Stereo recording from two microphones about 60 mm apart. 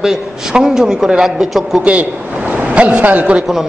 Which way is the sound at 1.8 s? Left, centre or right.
Right.